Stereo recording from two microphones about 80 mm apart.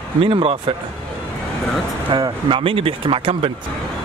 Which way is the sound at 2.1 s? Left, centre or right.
Right.